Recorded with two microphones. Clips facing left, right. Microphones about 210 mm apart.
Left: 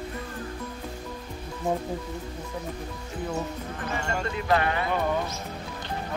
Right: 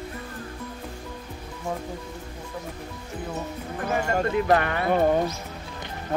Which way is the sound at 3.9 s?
50° right (ahead or behind).